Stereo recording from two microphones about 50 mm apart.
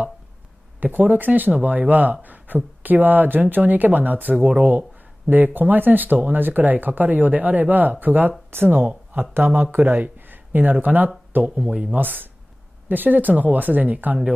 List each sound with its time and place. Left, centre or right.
0.9 s speech: right
11.4 s speech: right
12.8 s speech: right